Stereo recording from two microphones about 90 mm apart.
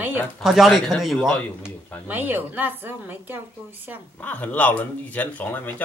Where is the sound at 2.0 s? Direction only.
20° right (ahead or behind).